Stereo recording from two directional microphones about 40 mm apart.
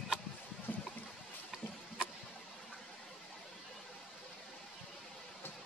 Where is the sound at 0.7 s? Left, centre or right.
Left.